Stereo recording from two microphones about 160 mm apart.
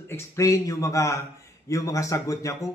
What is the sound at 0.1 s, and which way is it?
A man's voice, 20° left (ahead or behind).